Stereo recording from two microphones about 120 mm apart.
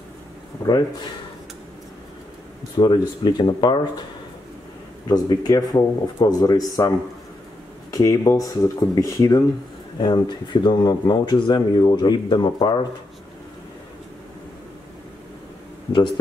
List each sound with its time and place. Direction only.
0.6 s speech: 35° left (ahead or behind)
2.7 s speech: 40° left (ahead or behind)
5.0 s speech: 35° left (ahead or behind)
7.9 s speech: 30° left (ahead or behind)
9.9 s speech: 40° left (ahead or behind)